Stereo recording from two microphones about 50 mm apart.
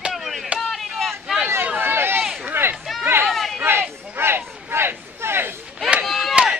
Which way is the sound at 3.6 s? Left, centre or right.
Right.